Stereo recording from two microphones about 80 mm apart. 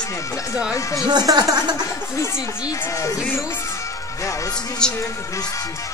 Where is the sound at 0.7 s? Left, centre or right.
Left.